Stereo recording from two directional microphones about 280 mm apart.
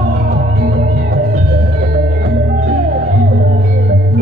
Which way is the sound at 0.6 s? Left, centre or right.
Right.